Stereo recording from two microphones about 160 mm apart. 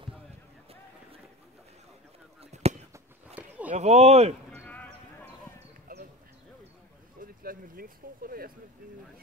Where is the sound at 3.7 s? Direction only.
45° right (ahead or behind).